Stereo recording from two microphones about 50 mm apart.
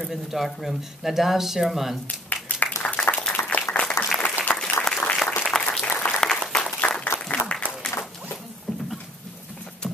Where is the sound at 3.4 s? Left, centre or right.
Left.